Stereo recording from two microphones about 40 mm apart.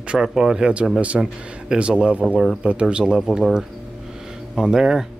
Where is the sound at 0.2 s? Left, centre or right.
Centre.